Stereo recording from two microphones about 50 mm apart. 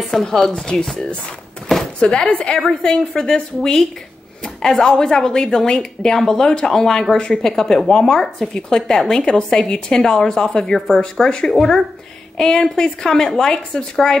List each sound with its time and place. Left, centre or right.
0.1 s speech: centre
2.0 s speech: centre